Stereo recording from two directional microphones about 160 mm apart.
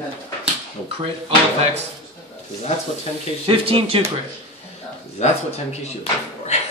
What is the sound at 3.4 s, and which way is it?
Speech, 35° right (ahead or behind).